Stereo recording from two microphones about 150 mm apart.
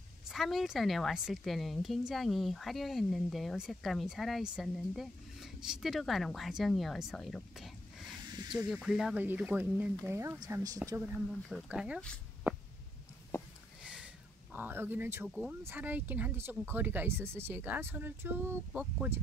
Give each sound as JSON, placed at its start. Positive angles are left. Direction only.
{"t": 0.3, "sound": "a woman's voice", "side_deg": 0}
{"t": 8.3, "sound": "snake", "side_deg": -30}
{"t": 8.6, "sound": "speech", "side_deg": -5}
{"t": 11.4, "sound": "speech", "side_deg": -5}
{"t": 12.5, "sound": "a sound", "side_deg": -15}
{"t": 13.8, "sound": "a sound", "side_deg": -5}
{"t": 15.2, "sound": "a woman's voice", "side_deg": 0}